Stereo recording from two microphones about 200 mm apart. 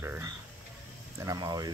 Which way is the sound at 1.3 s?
20° right (ahead or behind).